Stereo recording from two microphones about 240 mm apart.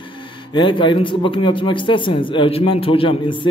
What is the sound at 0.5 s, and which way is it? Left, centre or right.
A man's voice, centre.